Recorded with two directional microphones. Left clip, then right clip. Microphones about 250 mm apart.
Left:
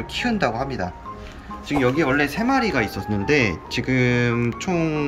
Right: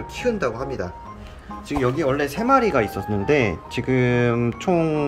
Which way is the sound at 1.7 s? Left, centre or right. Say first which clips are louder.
Left 2 dB; centre.